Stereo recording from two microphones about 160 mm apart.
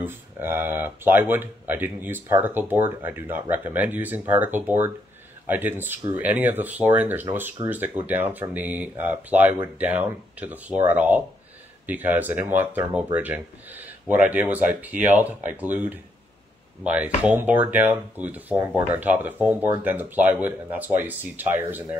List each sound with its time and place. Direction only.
0.0 s speech: 15° right (ahead or behind)